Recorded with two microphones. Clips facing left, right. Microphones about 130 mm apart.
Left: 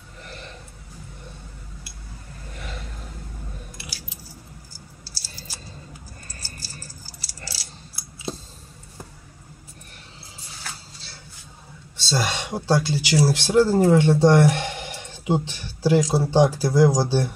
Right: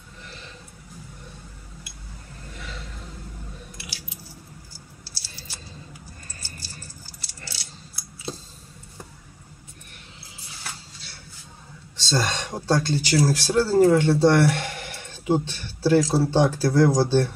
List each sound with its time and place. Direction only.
5.0 s typing: 40° left (ahead or behind)
6.4 s keys jangling: 40° left (ahead or behind)
7.4 s a sound: 35° left (ahead or behind)
12.1 s speech: 10° left (ahead or behind)